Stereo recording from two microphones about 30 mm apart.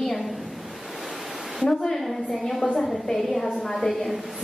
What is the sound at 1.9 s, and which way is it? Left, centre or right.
A woman's voice, centre.